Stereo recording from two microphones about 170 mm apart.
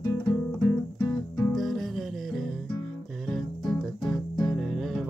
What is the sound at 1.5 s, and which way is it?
Music, centre (ahead or behind).